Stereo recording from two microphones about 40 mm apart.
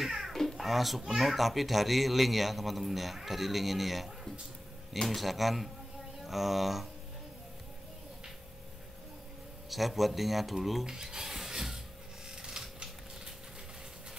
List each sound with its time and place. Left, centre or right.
0.0 s music: centre
0.3 s music: centre
0.6 s a child's voice: centre
9.7 s speech: centre
10.9 s rub: centre
12.4 s a sound: centre